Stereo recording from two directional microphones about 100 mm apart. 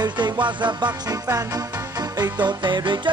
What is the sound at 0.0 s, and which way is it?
Music, 50° right (ahead or behind).